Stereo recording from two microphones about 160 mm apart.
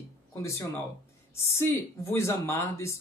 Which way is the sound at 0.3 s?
20° left (ahead or behind).